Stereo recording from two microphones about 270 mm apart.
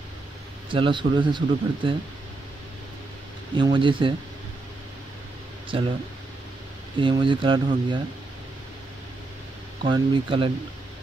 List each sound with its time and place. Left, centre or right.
0.7 s speech: centre
3.5 s speech: centre
5.7 s speech: centre
7.0 s speech: centre
9.8 s speech: centre